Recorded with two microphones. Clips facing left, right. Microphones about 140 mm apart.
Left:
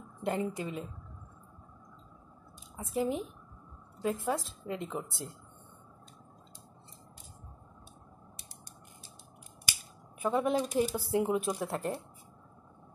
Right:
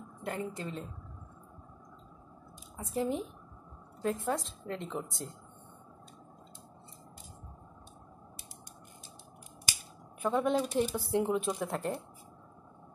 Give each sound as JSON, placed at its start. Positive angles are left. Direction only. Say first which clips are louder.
{"t": 0.2, "sound": "speech", "louder": "left 4 dB", "side_deg": 20}
{"t": 2.8, "sound": "speech", "louder": "left 1 dB", "side_deg": 0}
{"t": 10.2, "sound": "speech", "louder": "even", "side_deg": 0}